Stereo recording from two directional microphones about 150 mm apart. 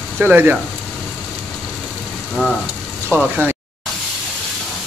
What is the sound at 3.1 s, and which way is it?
Speech, 15° right (ahead or behind).